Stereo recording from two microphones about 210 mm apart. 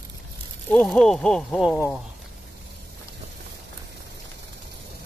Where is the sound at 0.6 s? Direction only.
5° left (ahead or behind).